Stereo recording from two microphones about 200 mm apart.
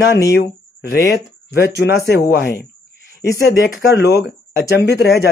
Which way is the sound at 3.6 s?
55° left (ahead or behind).